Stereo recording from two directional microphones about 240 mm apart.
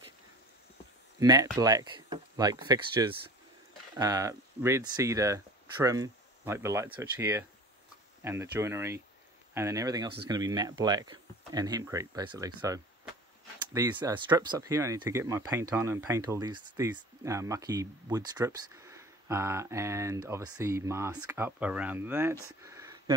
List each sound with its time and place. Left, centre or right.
1.2 s speech: centre